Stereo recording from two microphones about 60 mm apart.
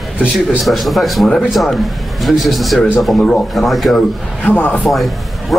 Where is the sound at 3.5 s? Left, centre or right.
Centre.